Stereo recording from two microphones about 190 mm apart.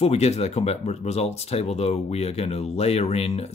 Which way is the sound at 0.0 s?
35° left (ahead or behind).